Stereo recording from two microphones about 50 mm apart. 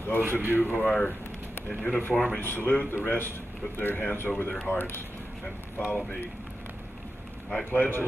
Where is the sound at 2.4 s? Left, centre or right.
Left.